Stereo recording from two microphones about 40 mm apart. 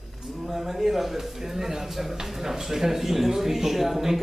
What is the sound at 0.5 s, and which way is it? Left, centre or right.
A man's voice, centre.